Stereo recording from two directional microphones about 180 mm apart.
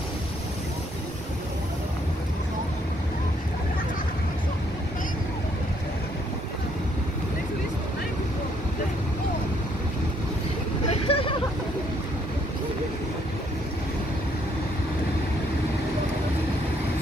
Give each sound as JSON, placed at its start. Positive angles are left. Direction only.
{"t": 10.9, "sound": "hubbub", "side_deg": 30}